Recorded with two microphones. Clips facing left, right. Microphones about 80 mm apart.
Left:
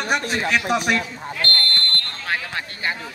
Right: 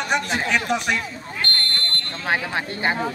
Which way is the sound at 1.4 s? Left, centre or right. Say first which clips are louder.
Left 2 dB; centre.